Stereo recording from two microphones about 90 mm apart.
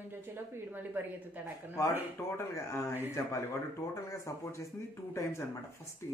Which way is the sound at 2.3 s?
30° left (ahead or behind).